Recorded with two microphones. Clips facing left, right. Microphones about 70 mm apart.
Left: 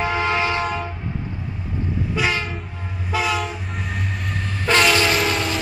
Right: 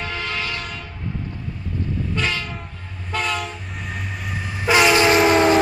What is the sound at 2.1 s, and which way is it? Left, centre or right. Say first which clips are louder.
Train: left 4 dB; centre.